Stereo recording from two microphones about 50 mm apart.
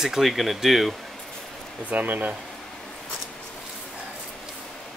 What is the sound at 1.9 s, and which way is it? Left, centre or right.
Speech, right.